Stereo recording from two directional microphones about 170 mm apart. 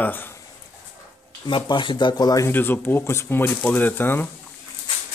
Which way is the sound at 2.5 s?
10° left (ahead or behind).